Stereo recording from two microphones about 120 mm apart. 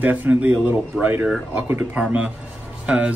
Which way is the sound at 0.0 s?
15° right (ahead or behind).